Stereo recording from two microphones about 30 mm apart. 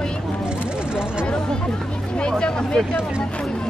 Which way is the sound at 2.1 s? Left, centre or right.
Left.